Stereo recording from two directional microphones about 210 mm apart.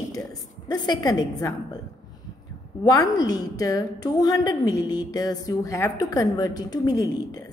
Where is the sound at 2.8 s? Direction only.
15° left (ahead or behind).